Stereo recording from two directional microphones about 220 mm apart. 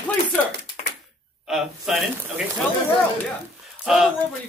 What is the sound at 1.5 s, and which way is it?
Speech, centre (ahead or behind).